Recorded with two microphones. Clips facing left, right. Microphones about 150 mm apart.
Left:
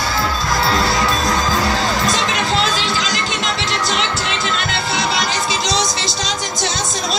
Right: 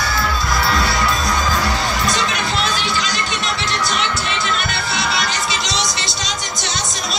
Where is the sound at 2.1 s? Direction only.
90° left.